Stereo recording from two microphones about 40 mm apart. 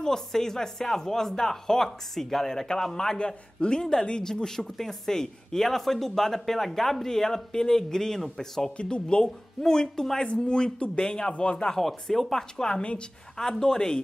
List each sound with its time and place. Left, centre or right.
0.0 s speech: centre
8.7 s a man's voice: left
9.2 s speech: centre
10.2 s a man's voice: left